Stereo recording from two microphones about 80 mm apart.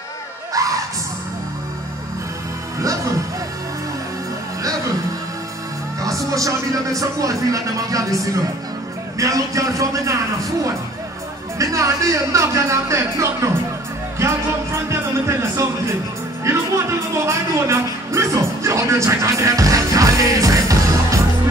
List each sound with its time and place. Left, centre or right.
0.5 s gasp: right
6.0 s speech: right
11.5 s speech: right
14.2 s music: right
17.3 s music: right